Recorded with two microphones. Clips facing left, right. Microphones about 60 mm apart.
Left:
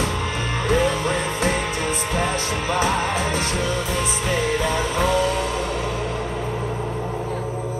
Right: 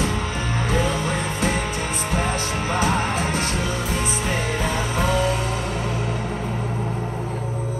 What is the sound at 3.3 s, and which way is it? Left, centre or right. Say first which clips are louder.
Music: left 1 dB; left.